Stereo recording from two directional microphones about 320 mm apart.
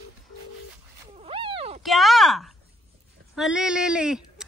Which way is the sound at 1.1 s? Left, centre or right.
Centre.